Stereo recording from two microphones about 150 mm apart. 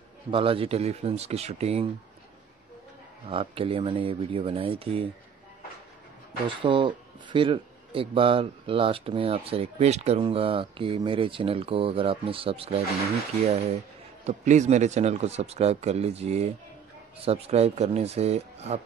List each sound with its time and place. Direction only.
0.3 s speech: 35° right (ahead or behind)
3.3 s speech: 35° right (ahead or behind)
6.4 s speech: 35° right (ahead or behind)